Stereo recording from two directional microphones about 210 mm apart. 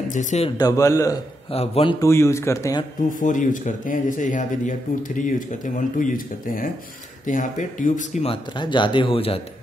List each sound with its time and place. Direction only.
0.1 s speech: 35° left (ahead or behind)
0.6 s speech: 15° left (ahead or behind)
1.5 s speech: 25° left (ahead or behind)
2.0 s speech: 10° left (ahead or behind)
3.1 s speech: 40° left (ahead or behind)